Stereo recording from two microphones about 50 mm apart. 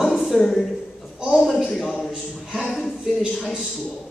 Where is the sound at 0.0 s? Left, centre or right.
Centre.